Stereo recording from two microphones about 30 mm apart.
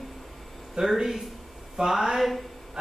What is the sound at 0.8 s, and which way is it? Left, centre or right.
Speech, right.